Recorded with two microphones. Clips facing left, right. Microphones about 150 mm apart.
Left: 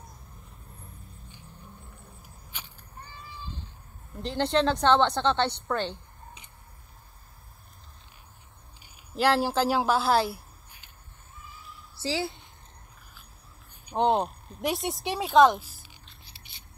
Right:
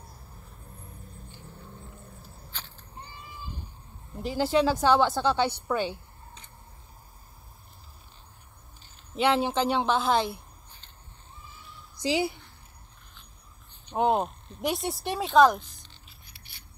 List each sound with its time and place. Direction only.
1.3 s vehicle: 15° left (ahead or behind)
2.5 s a sound: 10° left (ahead or behind)
3.0 s a sound: 20° right (ahead or behind)
4.2 s speech: 5° right (ahead or behind)
9.1 s speech: centre (ahead or behind)
12.0 s a woman's voice: 15° right (ahead or behind)
13.9 s speech: centre (ahead or behind)
16.3 s scissors: 25° left (ahead or behind)